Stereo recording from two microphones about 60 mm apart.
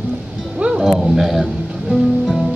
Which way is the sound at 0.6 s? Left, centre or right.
Centre.